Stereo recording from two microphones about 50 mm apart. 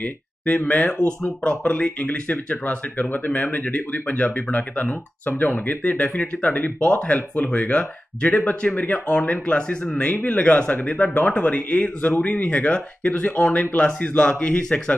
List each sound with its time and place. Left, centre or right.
0.7 s speech: left
0.9 s speech: centre
1.7 s speech: left
10.0 s speech: left